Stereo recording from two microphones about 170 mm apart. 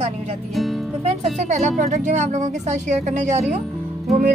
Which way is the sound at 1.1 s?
40° right (ahead or behind).